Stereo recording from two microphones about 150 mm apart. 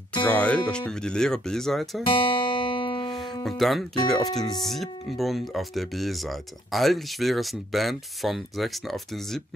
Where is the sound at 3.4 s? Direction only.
Centre (ahead or behind).